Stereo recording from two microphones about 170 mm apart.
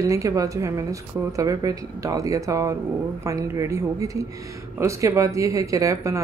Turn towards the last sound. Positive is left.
turn(degrees=-20)  # may be behind; listen again after turning